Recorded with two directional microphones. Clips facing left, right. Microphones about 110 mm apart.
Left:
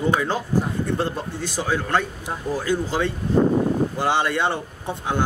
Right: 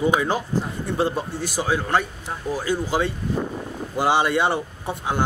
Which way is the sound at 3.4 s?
40° left (ahead or behind).